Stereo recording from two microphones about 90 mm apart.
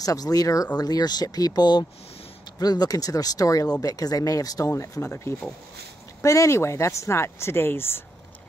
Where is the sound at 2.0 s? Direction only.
90° left.